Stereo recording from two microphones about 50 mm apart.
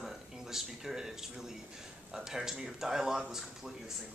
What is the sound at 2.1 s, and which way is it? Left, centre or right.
Speech, centre.